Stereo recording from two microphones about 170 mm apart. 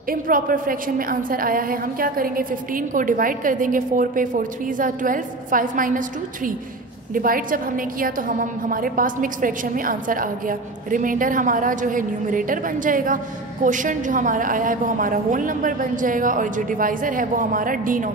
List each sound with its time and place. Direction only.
0.1 s a woman's voice: 55° right (ahead or behind)